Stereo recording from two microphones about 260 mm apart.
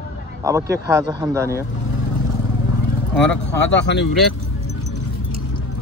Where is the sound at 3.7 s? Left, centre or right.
Left.